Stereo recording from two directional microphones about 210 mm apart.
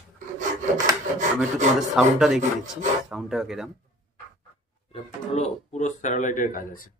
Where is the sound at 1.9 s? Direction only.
Centre (ahead or behind).